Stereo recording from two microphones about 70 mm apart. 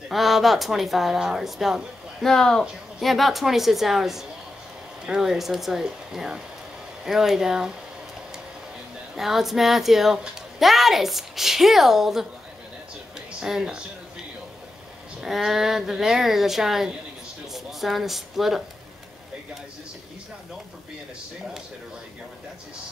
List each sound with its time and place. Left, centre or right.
0.1 s a woman's voice: centre
2.2 s a woman's voice: centre
9.1 s a woman's voice: centre
13.4 s speech: centre
15.1 s a woman's voice: centre